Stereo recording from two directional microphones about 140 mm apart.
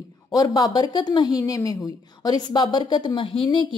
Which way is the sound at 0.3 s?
25° left (ahead or behind).